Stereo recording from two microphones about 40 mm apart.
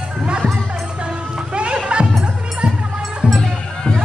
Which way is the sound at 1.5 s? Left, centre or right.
Right.